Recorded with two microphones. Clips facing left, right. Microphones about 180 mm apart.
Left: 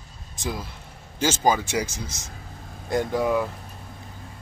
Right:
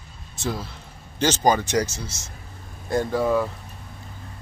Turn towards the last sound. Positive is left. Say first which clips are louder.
# right 1 dB
turn(degrees=15)  # may be behind; listen again after turning